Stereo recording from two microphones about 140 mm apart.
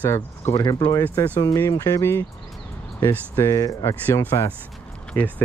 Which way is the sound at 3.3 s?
20° left (ahead or behind).